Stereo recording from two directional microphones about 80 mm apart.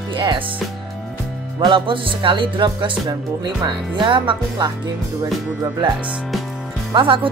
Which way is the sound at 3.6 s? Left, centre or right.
Right.